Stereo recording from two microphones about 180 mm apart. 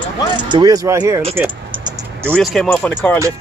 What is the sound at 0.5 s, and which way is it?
Speech, 20° right (ahead or behind).